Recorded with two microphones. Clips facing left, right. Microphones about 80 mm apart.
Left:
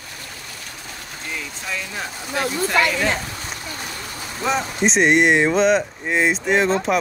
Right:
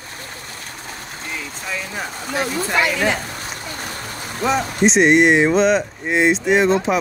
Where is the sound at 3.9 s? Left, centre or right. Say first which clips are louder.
Right 2 dB; right.